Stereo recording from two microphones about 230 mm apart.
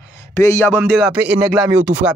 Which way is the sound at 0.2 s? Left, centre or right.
Centre.